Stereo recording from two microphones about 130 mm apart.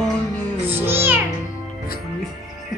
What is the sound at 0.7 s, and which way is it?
Music, 15° right (ahead or behind).